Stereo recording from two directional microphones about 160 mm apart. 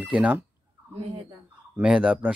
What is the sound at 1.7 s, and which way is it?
Speech, 5° right (ahead or behind).